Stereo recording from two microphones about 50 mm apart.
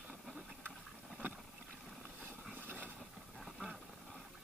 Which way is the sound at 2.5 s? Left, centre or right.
Right.